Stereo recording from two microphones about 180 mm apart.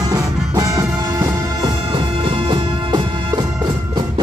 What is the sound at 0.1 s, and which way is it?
Music, 20° right (ahead or behind).